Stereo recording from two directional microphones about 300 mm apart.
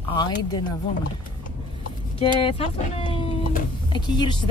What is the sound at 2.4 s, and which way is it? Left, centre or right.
Speech, centre.